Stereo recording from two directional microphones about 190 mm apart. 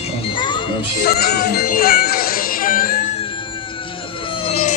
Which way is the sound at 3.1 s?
25° left (ahead or behind).